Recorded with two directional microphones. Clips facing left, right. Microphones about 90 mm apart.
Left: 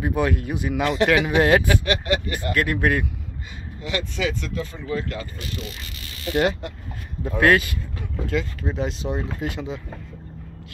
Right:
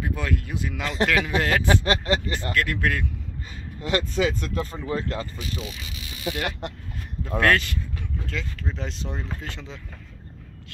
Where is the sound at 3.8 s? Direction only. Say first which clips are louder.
Right 3 dB; 40° right (ahead or behind).